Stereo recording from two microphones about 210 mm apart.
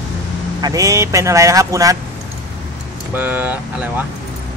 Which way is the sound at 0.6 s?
15° right (ahead or behind).